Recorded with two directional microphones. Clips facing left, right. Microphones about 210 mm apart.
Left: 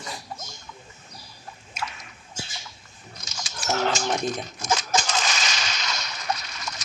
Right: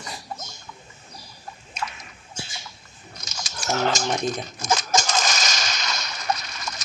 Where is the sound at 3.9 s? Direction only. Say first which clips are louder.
Right 1 dB; 40° right (ahead or behind).